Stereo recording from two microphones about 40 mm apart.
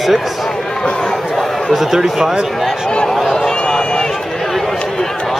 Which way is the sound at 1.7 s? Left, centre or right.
Centre.